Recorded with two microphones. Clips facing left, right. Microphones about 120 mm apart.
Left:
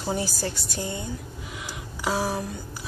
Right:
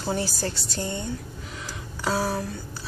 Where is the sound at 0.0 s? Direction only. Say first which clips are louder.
Even; 10° left (ahead or behind).